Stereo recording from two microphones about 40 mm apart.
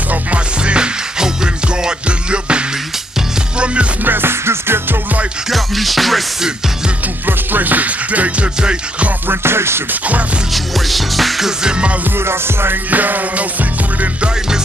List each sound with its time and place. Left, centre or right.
0.7 s music: right
4.0 s music: right
5.5 s music: centre
7.2 s music: right
9.3 s music: right
10.5 s music: centre
11.4 s music: right
12.9 s music: right